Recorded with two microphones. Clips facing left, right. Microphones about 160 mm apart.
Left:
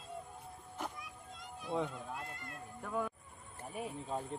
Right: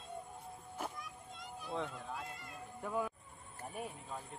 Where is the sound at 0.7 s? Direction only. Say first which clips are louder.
Even; centre (ahead or behind).